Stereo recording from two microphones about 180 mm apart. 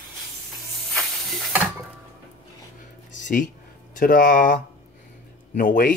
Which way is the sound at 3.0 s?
45° left (ahead or behind).